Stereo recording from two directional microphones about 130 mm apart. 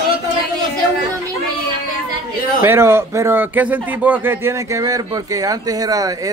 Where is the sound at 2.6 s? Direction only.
20° right (ahead or behind).